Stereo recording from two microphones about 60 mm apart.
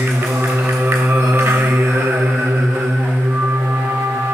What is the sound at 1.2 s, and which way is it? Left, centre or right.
Mantra, right.